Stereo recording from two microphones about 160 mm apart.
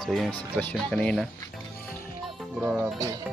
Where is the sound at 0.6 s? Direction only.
10° left (ahead or behind).